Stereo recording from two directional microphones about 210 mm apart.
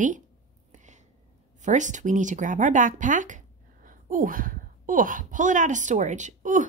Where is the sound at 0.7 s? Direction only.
35° right (ahead or behind).